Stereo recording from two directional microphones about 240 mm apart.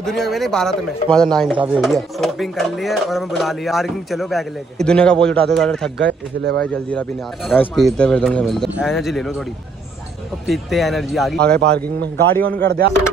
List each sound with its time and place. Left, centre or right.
0.0 s speech: centre
5.9 s speech: right
6.6 s speech: centre
10.4 s speech: centre
11.6 s speech: right
12.2 s a man's voice: centre
12.6 s speech: right